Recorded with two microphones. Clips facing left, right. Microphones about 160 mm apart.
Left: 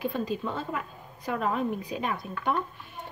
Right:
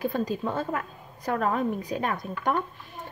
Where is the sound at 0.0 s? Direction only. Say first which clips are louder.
Right 2 dB; 45° right (ahead or behind).